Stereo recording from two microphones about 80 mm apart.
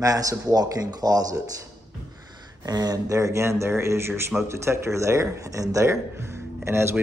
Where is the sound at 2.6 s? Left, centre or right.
Right.